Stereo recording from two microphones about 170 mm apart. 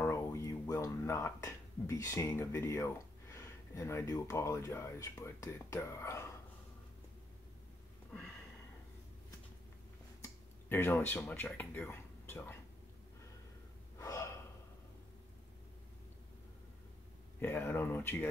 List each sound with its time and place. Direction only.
0.0 s speech: 15° left (ahead or behind)
10.7 s speech: 10° left (ahead or behind)
13.9 s gasp: 20° left (ahead or behind)
17.4 s speech: 10° left (ahead or behind)